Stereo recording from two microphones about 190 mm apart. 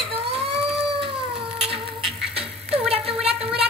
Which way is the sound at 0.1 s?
30° right (ahead or behind).